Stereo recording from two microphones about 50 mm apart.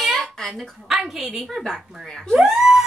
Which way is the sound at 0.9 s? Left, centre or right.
Centre.